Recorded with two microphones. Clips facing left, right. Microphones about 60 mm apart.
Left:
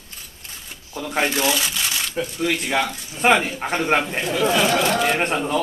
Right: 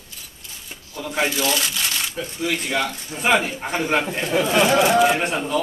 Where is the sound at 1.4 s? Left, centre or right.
Centre.